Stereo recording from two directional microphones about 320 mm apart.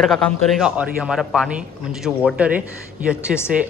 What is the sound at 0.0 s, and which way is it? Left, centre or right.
Speech, centre.